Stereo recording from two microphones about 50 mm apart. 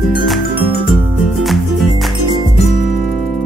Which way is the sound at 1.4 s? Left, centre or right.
Centre.